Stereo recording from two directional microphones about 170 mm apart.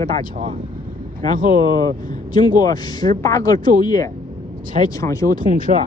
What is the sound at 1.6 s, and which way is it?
Speech, 25° left (ahead or behind).